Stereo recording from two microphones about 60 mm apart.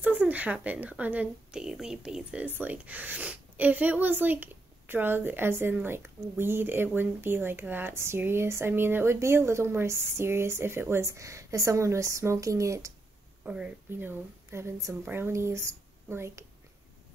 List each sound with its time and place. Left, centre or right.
0.0 s speech: right
1.5 s speech: centre
2.4 s speech: right
7.9 s speech: right
13.4 s speech: centre
13.8 s speech: right